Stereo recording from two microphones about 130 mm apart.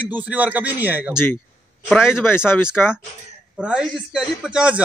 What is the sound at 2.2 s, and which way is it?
Speech, 15° left (ahead or behind).